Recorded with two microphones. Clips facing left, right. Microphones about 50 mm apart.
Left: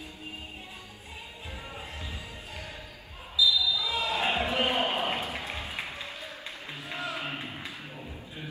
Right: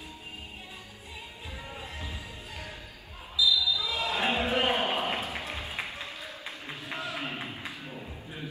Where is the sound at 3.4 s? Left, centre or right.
Left.